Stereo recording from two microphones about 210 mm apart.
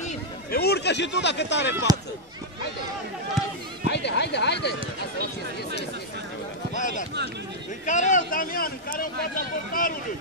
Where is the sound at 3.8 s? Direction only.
55° left (ahead or behind).